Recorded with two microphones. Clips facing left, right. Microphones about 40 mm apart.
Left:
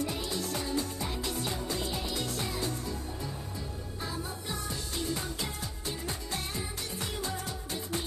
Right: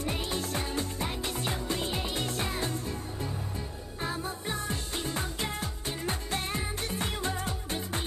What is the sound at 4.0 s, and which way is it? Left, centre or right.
Music, right.